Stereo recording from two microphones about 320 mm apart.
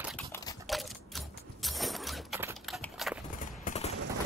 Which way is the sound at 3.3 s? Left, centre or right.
Left.